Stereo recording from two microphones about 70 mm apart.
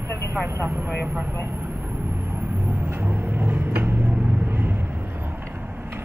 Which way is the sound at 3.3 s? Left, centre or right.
Right.